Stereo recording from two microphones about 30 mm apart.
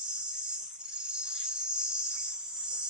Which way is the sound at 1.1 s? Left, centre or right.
Right.